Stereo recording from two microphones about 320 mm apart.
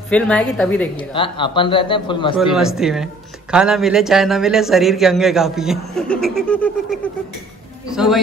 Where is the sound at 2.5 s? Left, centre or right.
Centre.